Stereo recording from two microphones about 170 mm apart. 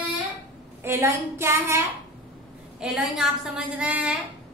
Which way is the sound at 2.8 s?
Centre (ahead or behind).